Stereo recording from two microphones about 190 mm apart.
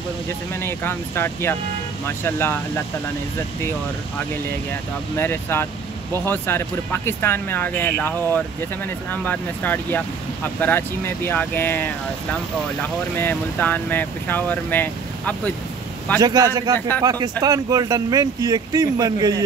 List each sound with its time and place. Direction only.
0.6 s speech: 10° left (ahead or behind)
5.1 s speech: 10° left (ahead or behind)
16.2 s speech: 20° right (ahead or behind)